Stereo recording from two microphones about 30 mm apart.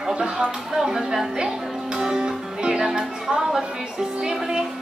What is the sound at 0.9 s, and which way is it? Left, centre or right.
Speech, centre.